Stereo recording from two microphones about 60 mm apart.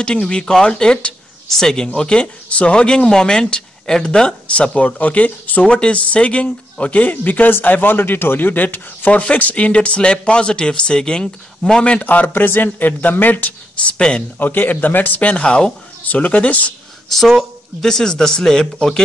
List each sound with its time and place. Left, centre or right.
0.0 s speech: centre
13.9 s speech: centre
14.4 s speech: left; by 15.7 s centre
16.0 s speech: left
17.1 s speech: centre